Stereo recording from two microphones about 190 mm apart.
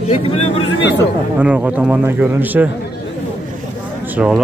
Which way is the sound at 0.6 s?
70° left (ahead or behind).